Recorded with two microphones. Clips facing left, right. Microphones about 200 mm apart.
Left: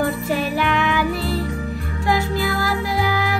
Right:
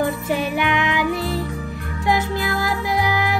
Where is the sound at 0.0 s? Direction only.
20° right (ahead or behind).